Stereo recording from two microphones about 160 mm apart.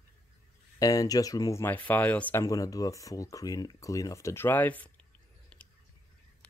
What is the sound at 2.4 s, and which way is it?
Speech, 20° left (ahead or behind).